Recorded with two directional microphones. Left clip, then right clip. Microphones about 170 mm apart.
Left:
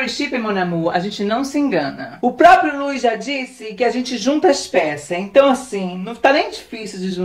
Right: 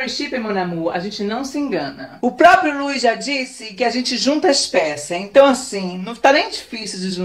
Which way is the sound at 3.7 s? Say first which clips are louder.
Even; 5° right (ahead or behind).